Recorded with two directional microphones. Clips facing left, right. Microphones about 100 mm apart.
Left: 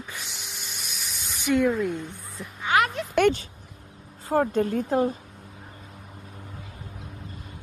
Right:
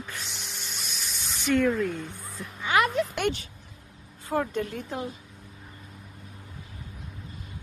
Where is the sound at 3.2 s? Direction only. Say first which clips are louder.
Left 8 dB; 40° left (ahead or behind).